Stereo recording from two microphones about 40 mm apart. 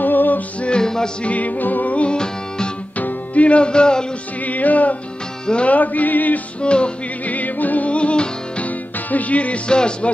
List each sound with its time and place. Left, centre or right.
0.0 s music: left
0.6 s music: left
1.2 s music: left
1.6 s music: left
2.0 s music: left
3.0 s music: left
4.5 s music: left
6.6 s music: left
7.2 s music: left